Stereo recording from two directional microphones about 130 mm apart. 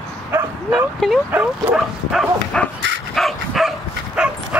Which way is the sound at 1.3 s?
15° right (ahead or behind).